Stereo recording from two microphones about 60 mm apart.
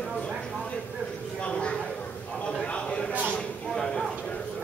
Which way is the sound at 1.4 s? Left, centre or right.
Centre.